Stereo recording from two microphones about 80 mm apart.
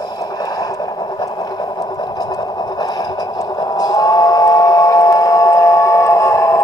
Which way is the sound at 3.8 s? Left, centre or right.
Left.